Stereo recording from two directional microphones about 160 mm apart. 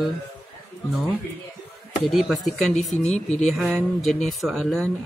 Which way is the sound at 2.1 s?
Centre (ahead or behind).